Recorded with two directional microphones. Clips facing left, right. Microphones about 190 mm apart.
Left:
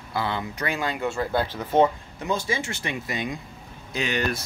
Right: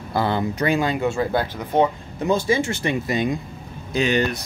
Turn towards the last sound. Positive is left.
turn(degrees=-30)  # may be behind; listen again after turning